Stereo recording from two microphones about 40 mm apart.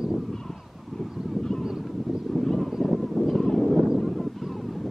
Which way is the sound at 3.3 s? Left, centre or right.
Centre.